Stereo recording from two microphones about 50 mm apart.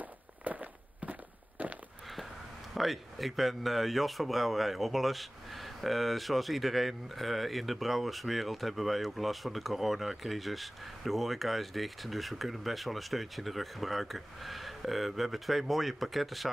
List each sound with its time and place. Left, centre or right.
0.0 s walk: right
1.6 s a sound: right
2.7 s speech: centre